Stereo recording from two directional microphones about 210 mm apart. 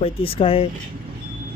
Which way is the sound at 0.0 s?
25° left (ahead or behind).